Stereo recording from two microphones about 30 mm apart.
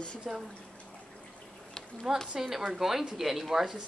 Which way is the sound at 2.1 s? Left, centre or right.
Centre.